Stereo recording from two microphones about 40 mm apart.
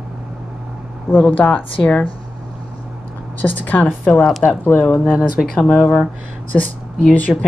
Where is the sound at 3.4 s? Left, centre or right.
Left.